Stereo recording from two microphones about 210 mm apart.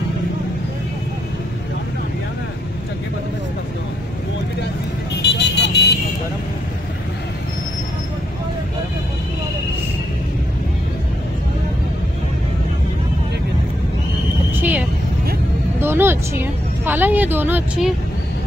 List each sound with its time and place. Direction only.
5.3 s vehicle: 55° left (ahead or behind)
14.6 s vehicle: 10° right (ahead or behind)
16.8 s a sound: 10° right (ahead or behind)